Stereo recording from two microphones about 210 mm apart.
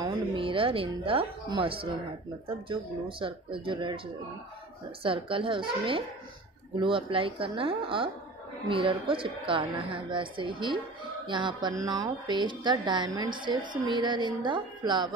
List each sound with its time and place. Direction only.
0.0 s a woman's voice: 25° right (ahead or behind)
5.0 s a woman's voice: 25° right (ahead or behind)